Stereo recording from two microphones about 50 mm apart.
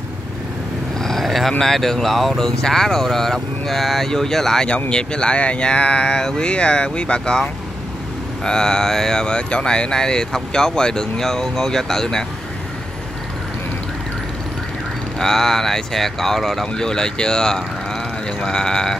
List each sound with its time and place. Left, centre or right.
0.9 s a sound: centre
1.6 s speech: centre
4.6 s speech: left
8.5 s speech: centre
15.1 s speech: centre